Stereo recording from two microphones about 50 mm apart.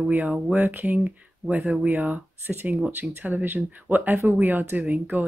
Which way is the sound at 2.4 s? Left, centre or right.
Right.